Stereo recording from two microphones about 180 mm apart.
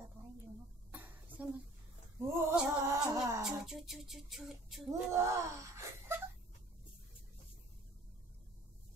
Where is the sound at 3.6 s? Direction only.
Centre (ahead or behind).